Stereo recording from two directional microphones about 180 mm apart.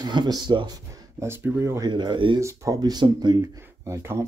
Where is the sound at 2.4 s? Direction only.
15° right (ahead or behind).